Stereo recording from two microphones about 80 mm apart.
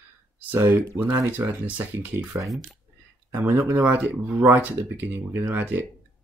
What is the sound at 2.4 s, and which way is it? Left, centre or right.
Speech, centre.